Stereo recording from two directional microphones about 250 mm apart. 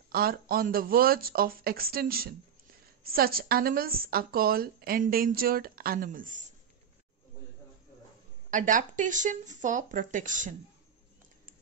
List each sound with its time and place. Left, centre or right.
0.1 s a woman's voice: right
8.5 s a woman's voice: right